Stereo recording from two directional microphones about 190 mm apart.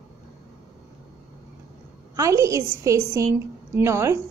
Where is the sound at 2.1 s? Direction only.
15° right (ahead or behind).